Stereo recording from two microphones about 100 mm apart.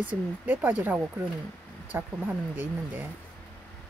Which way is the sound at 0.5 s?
20° right (ahead or behind).